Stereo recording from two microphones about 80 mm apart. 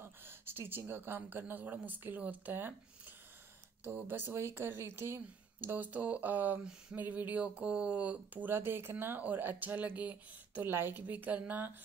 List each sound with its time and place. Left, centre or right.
0.0 s a woman's voice: right
3.8 s speech: right